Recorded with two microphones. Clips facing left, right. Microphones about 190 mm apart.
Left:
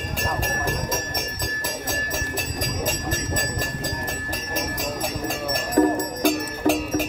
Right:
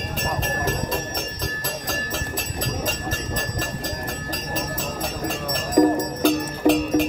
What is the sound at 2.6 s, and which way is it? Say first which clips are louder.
Jingle bell: even; 15° left (ahead or behind).